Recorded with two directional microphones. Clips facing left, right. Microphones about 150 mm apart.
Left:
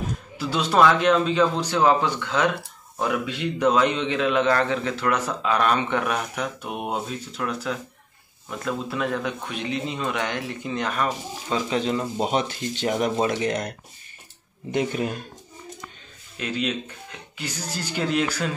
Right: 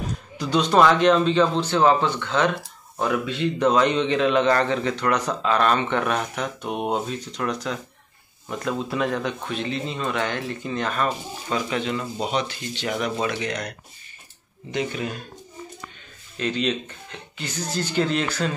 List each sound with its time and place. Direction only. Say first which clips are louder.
0.4 s a man's voice: right 2 dB; 5° left (ahead or behind)
9.5 s speech: right 1 dB; 15° left (ahead or behind)
11.5 s speech: left 2 dB; 35° left (ahead or behind)
16.3 s speech: right 3 dB; 5° left (ahead or behind)